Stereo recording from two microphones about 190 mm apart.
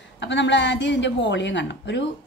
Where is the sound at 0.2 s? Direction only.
70° left (ahead or behind).